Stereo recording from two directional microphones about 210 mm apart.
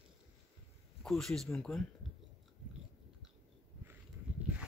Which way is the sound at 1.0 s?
Centre (ahead or behind).